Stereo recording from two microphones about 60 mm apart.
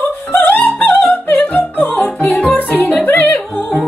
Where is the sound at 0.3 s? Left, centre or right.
Left.